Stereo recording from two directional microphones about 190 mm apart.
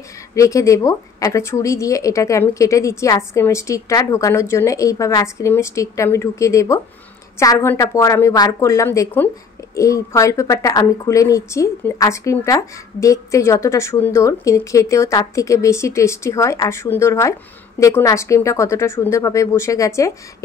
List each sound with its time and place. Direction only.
0.3 s a woman's voice: 15° left (ahead or behind)